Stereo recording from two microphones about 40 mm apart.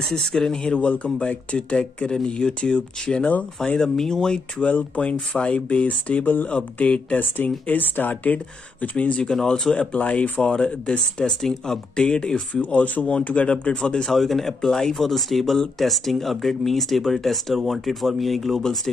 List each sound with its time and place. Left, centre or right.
0.0 s speech: centre
0.7 s speech: left
4.6 s speech: left
7.2 s speech: left
8.9 s speech: left
9.9 s speech: left
10.5 s speech: left
12.6 s speech: left
14.0 s speech: centre